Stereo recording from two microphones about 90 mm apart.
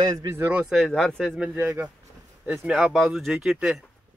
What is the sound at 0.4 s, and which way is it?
Speech, 15° right (ahead or behind).